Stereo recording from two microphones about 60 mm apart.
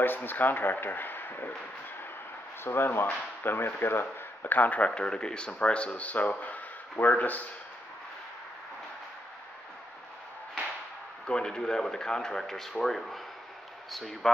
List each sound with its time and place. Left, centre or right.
0.0 s speech: left
2.6 s speech: left
11.2 s speech: centre